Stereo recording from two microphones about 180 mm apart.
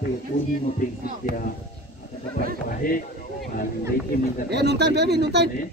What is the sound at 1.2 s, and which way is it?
Speech, 50° left (ahead or behind).